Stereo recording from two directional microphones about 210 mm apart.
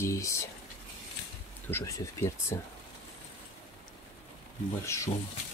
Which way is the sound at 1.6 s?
15° left (ahead or behind).